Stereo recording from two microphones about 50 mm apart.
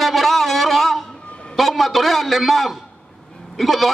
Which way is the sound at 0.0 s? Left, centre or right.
Centre.